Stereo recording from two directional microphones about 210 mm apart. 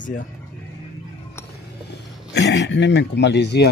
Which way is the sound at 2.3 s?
55° left (ahead or behind).